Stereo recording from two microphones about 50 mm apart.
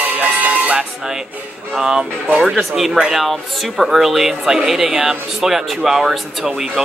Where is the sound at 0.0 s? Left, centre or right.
Right.